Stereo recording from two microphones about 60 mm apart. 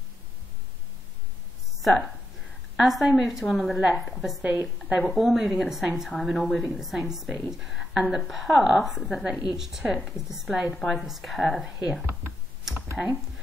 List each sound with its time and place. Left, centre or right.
1.8 s a woman's voice: centre
4.4 s a woman's voice: right
5.1 s a woman's voice: centre
12.9 s speech: centre